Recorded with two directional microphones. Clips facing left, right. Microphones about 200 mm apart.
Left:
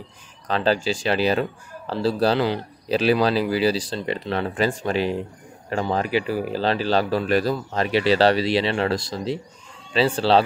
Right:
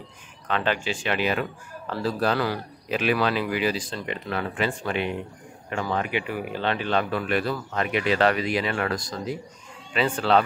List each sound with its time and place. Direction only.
0.5 s speech: 35° left (ahead or behind)